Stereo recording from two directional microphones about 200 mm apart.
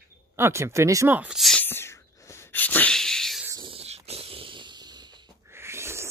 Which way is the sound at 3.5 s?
20° right (ahead or behind).